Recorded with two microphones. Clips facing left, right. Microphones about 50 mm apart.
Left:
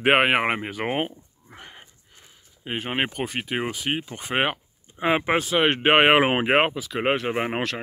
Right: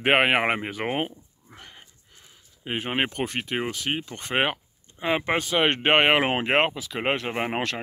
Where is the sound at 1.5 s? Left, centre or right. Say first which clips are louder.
Left 3 dB; centre.